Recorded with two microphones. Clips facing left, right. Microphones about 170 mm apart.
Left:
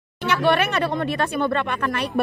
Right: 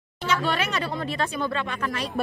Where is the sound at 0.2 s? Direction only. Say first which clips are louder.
Left 6 dB; 65° left (ahead or behind).